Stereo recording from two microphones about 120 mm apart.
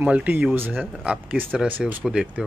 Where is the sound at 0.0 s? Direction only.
10° right (ahead or behind).